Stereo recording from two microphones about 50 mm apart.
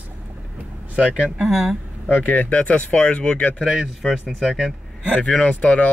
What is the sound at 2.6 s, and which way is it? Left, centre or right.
Speech, left.